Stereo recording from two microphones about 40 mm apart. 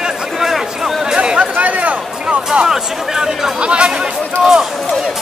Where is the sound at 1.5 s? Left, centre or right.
Right.